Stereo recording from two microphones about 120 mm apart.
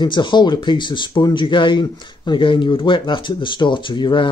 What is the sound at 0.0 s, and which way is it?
Speech, 40° left (ahead or behind).